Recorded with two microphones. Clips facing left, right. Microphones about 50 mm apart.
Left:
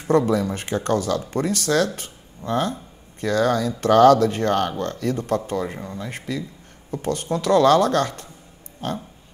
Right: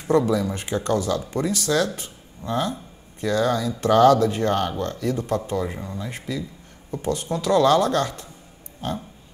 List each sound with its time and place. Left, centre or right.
0.0 s speech: left
5.7 s speech: left